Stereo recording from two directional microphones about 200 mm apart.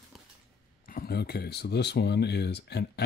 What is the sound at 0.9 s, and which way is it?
Speech, 45° left (ahead or behind).